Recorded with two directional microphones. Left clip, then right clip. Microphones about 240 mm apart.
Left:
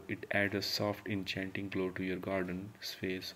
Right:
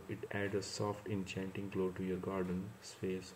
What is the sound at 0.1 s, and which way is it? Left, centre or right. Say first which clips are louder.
Speech: left 6 dB; left.